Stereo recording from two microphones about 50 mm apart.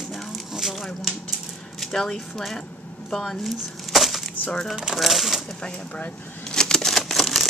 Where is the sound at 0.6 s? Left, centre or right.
Centre.